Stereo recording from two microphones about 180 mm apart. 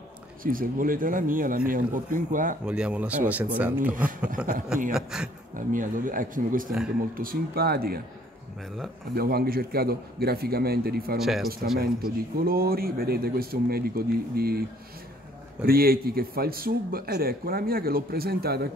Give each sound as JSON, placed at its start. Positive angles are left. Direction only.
{"t": 0.4, "sound": "speech", "side_deg": -50}
{"t": 2.6, "sound": "speech", "side_deg": -5}
{"t": 5.7, "sound": "speech", "side_deg": -45}
{"t": 9.1, "sound": "speech", "side_deg": -60}
{"t": 11.1, "sound": "speech", "side_deg": 0}
{"t": 11.8, "sound": "speech", "side_deg": -55}
{"t": 15.6, "sound": "speech", "side_deg": -55}